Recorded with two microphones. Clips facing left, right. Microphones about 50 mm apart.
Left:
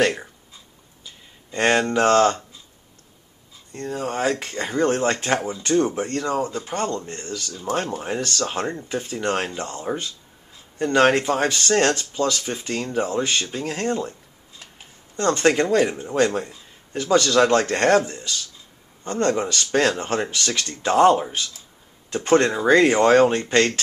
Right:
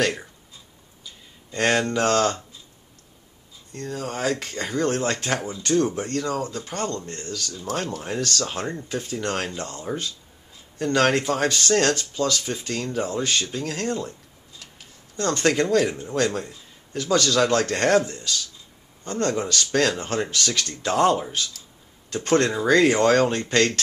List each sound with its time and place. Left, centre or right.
1.0 s speech: centre
3.7 s speech: centre